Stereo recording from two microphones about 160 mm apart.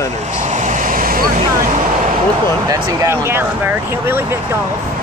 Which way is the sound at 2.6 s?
20° right (ahead or behind).